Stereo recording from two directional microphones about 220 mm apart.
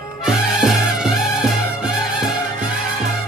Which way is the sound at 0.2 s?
5° right (ahead or behind).